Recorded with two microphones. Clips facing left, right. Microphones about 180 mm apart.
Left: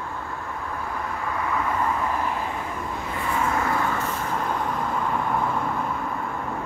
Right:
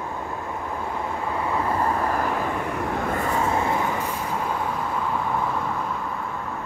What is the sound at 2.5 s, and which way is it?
Vehicle, 60° right (ahead or behind).